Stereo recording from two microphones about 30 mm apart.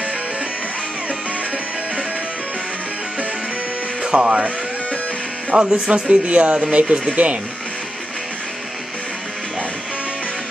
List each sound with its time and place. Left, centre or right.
4.1 s speech: right
5.5 s speech: right